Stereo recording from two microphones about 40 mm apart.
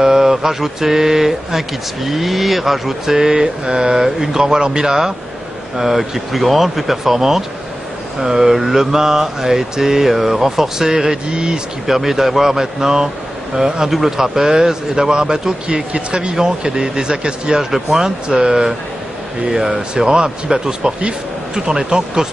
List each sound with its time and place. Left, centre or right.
0.0 s mantra: centre
5.8 s speech: centre
8.2 s mantra: centre
11.8 s mantra: centre
15.9 s a man's voice: right
17.6 s mantra: centre
20.0 s a man's voice: centre
21.5 s mantra: centre